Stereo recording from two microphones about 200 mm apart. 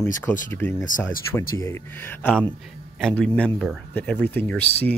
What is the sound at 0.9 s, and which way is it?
Speech, 40° left (ahead or behind).